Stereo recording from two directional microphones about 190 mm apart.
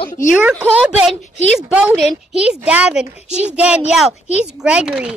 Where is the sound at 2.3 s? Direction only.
5° right (ahead or behind).